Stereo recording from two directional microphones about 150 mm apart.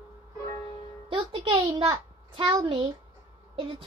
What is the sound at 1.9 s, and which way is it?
Speech, 25° right (ahead or behind).